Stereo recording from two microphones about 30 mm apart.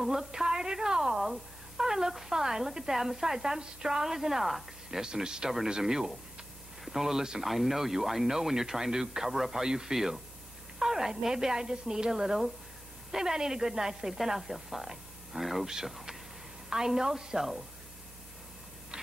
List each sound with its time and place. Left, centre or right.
0.2 s speech: centre
4.9 s a man's voice: right
13.1 s speech: centre
14.1 s speech: centre
14.9 s a sound: centre
15.6 s a woman's voice: centre